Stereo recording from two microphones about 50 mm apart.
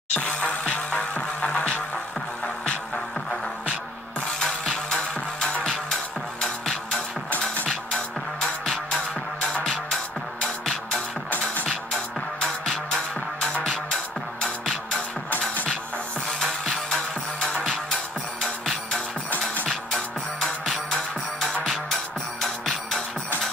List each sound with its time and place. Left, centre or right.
0.1 s music: left
4.8 s music: centre
9.5 s music: left
15.2 s music: left
16.3 s music: centre
20.3 s music: centre